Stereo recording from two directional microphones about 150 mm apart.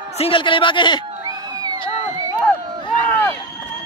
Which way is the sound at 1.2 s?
25° right (ahead or behind).